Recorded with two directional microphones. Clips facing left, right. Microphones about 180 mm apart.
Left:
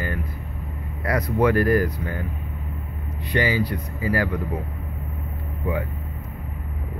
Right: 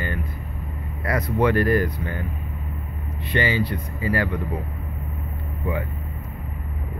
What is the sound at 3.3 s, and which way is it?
Speech, 10° left (ahead or behind).